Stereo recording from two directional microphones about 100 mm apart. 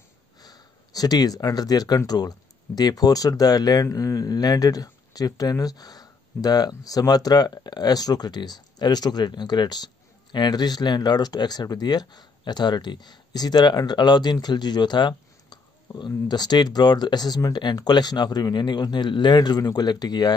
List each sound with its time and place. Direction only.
0.4 s speech: 40° left (ahead or behind)